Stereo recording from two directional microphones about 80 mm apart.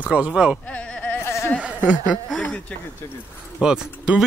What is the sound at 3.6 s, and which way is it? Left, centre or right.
Speech, centre.